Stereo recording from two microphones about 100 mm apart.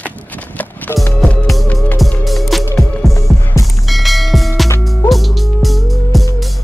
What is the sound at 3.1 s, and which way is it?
Music, 35° left (ahead or behind).